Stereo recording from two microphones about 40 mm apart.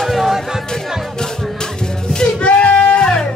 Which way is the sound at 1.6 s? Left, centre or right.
Centre.